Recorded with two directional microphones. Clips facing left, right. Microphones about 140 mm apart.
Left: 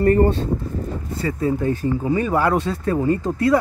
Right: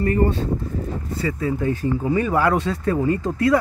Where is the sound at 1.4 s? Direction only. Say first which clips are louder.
Left 3 dB; 35° left (ahead or behind).